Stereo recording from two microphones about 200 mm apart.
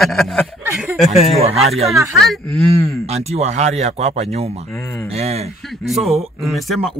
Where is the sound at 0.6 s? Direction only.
10° right (ahead or behind).